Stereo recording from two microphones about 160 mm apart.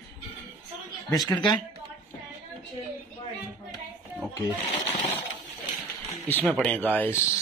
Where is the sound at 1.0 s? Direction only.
20° left (ahead or behind).